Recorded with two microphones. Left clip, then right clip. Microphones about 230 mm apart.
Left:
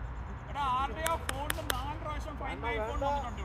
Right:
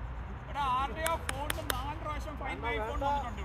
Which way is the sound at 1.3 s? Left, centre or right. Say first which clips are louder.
Even; centre.